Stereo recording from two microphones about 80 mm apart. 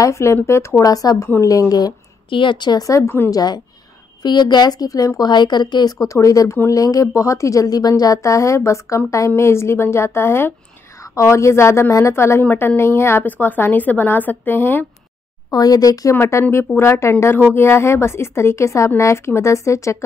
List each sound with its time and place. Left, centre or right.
0.0 s a woman's voice: left
0.8 s speech: left
2.2 s speech: left
3.3 s a woman's voice: left
5.9 s a woman's voice: left
15.5 s speech: left
16.1 s a woman's voice: left